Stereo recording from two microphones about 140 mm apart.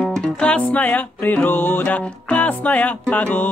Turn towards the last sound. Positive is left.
turn(degrees=10)  # may be behind; listen again after turning